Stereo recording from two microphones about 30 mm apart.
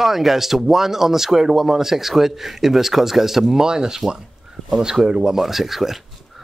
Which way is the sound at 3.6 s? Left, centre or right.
Right.